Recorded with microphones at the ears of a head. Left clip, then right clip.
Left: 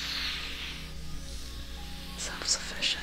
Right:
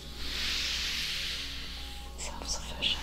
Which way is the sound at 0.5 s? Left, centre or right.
Right.